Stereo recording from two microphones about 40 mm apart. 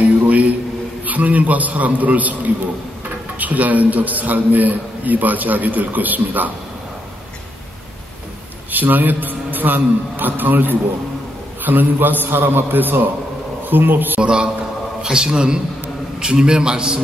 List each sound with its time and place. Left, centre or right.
0.3 s a sound: right
1.0 s a man's voice: right
8.7 s a man's voice: right
14.2 s a man's voice: right